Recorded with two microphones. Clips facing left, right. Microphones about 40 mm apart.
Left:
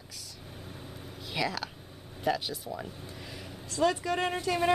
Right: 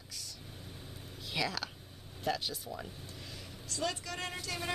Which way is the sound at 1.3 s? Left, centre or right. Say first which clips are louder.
Left 3 dB; centre.